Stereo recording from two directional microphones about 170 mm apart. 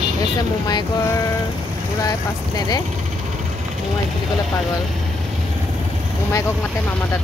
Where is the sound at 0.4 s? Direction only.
25° left (ahead or behind).